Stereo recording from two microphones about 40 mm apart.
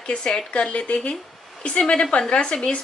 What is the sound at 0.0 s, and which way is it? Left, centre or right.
A woman's voice, left.